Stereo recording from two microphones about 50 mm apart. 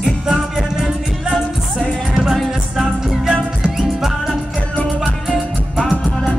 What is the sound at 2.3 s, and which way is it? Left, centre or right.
Music, centre.